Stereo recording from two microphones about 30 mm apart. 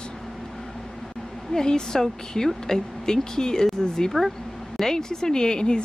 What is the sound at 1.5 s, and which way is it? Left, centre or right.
A woman's voice, left.